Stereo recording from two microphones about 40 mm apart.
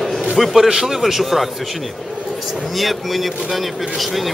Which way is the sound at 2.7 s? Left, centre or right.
Centre.